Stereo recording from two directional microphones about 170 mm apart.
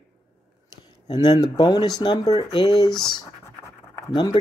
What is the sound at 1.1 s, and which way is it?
Speech, 20° left (ahead or behind).